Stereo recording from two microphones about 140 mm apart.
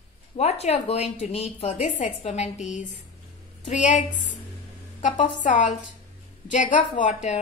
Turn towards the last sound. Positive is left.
turn(degrees=60)  # may be behind; listen again after turning